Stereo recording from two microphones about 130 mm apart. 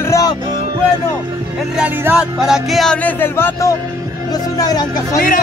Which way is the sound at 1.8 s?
15° right (ahead or behind).